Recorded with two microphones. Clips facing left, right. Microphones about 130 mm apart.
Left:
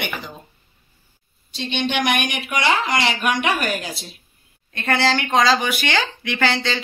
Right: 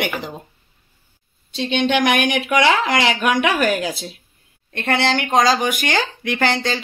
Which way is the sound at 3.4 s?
90° right.